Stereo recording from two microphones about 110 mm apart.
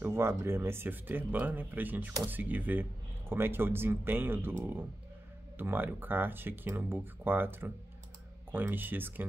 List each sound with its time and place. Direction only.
0.0 s speech: 20° right (ahead or behind)
5.6 s speech: 20° right (ahead or behind)